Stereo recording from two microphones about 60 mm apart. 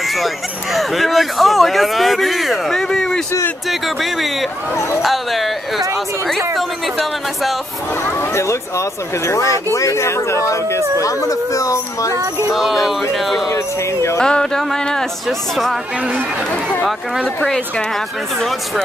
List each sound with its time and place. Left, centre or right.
0.0 s a sound: centre
0.7 s speech: centre
8.0 s speech: left
12.5 s speech: centre
14.2 s speech: centre
17.5 s speech: centre